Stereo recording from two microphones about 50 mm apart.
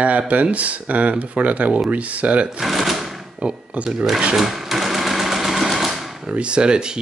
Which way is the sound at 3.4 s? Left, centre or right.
Right.